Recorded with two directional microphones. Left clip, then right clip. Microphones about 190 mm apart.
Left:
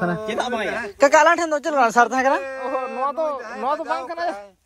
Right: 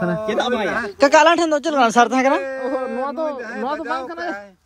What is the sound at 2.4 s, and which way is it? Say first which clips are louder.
Speech: right 2 dB; 55° right (ahead or behind).